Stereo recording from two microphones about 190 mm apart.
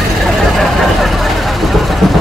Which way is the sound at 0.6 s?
Centre (ahead or behind).